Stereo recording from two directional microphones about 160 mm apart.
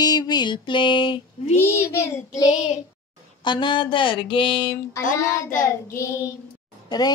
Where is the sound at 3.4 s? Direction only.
30° left (ahead or behind).